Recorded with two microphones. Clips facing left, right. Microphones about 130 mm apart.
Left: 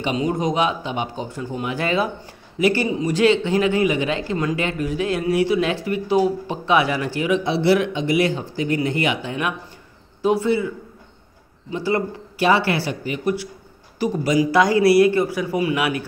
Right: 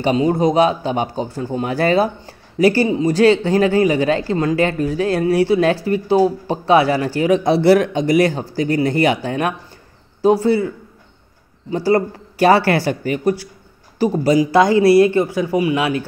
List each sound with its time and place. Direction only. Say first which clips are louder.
0.0 s a man's voice: right 6 dB; 35° right (ahead or behind)
11.7 s speech: right 6 dB; 40° right (ahead or behind)
13.9 s speech: right 4 dB; 30° right (ahead or behind)